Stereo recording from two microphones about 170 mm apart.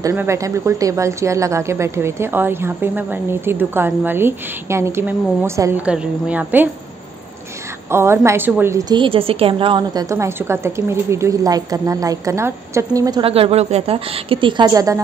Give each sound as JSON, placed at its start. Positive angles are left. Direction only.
{"t": 0.0, "sound": "speech", "side_deg": -15}
{"t": 7.9, "sound": "a woman's voice", "side_deg": -15}
{"t": 13.2, "sound": "a woman's voice", "side_deg": -35}